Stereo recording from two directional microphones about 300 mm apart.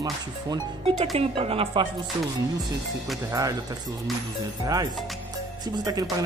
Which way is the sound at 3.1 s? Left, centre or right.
Centre.